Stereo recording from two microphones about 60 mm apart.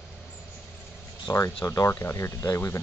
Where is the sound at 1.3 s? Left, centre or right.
Left.